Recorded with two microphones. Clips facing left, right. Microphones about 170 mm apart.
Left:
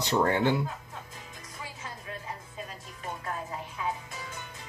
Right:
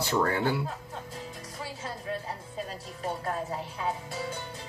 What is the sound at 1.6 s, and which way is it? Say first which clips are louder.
Music: right 6 dB; 35° right (ahead or behind).